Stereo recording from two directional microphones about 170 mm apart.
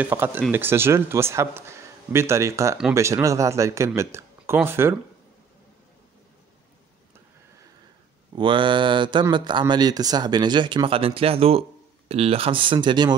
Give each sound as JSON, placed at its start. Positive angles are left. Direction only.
{"t": 0.0, "sound": "a man's voice", "side_deg": -10}
{"t": 8.4, "sound": "speech", "side_deg": -30}